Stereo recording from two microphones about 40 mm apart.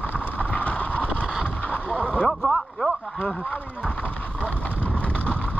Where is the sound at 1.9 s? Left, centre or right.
Left.